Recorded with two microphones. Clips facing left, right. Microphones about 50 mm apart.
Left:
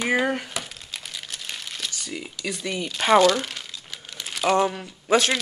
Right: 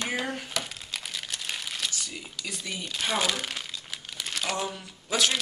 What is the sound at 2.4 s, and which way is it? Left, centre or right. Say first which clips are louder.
Speech: left 7 dB; centre.